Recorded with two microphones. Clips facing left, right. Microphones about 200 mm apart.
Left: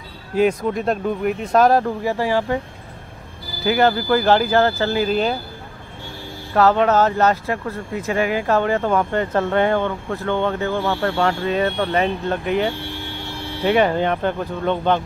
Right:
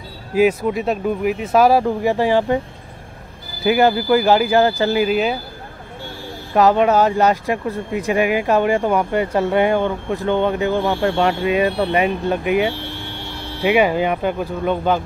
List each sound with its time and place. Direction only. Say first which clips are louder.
0.3 s speech: right 2 dB; 5° right (ahead or behind)
2.0 s speech: right 4 dB; 20° right (ahead or behind)
3.6 s speech: right 2 dB; 10° right (ahead or behind)
6.5 s speech: right 2 dB; 15° right (ahead or behind)